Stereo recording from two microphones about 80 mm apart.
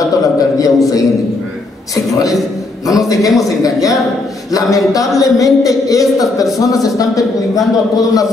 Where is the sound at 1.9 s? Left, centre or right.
Left.